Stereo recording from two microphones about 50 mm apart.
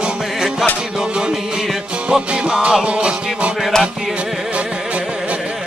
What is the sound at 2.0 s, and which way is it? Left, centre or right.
Music, right.